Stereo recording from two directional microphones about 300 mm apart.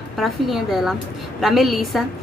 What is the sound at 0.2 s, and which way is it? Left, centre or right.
Speech, centre.